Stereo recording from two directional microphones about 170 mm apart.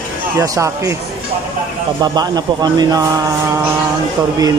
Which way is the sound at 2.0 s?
25° right (ahead or behind).